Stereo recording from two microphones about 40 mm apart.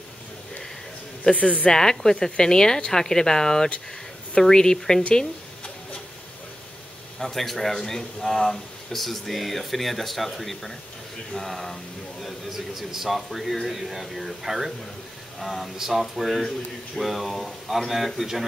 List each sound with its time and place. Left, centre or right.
1.3 s a woman's voice: left
1.8 s speech: centre
7.2 s speech: centre
12.4 s speech: centre